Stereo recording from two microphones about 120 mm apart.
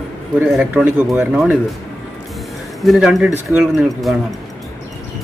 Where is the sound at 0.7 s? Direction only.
15° right (ahead or behind).